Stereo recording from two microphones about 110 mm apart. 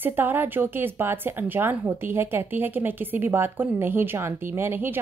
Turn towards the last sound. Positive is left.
turn(degrees=-20)  # may be behind; listen again after turning